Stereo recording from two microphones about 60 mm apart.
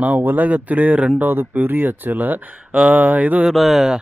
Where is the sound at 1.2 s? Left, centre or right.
Right.